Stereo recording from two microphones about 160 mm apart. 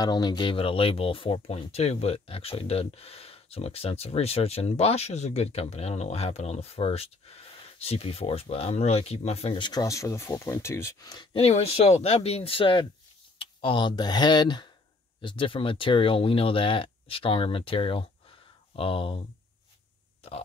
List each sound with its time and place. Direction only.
0.0 s speech: 25° left (ahead or behind)
11.3 s speech: 40° left (ahead or behind)